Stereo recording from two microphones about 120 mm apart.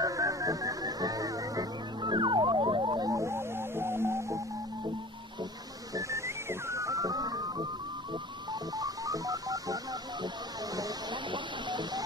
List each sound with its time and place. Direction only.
0.0 s music: 30° right (ahead or behind)
5.9 s music: 25° right (ahead or behind)